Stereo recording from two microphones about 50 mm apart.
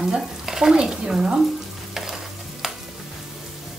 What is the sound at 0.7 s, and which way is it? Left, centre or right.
Speech, centre.